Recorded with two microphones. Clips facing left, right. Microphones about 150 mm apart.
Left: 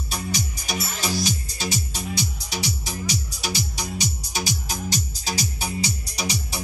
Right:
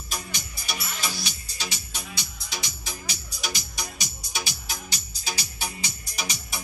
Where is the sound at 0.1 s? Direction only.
40° left (ahead or behind).